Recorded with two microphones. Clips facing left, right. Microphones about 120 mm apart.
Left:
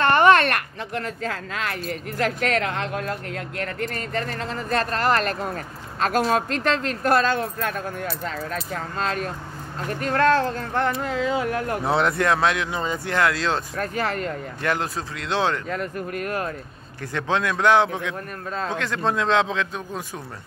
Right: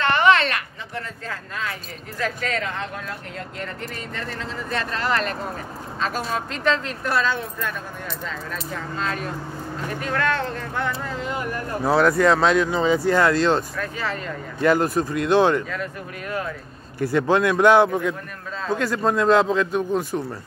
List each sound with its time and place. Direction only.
0.0 s a sound: 45° left (ahead or behind)
1.2 s speech: 75° left (ahead or behind); by 5.3 s 45° left (ahead or behind)
7.0 s speech: 50° left (ahead or behind)
11.1 s speech: 90° left
11.8 s speech: centre (ahead or behind)
12.9 s a man's voice: 10° right (ahead or behind)
13.7 s speech: 55° left (ahead or behind)
14.6 s a man's voice: 10° right (ahead or behind)
15.7 s speech: 55° left (ahead or behind)
17.0 s a man's voice: 10° right (ahead or behind)